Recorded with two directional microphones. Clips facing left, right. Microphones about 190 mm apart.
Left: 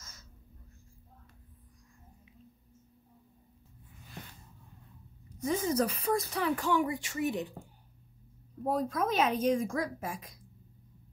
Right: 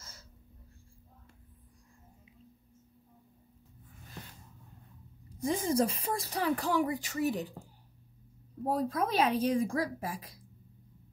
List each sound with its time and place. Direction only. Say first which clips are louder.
5.4 s speech: right 1 dB; 30° right (ahead or behind)
8.6 s speech: even; 30° right (ahead or behind)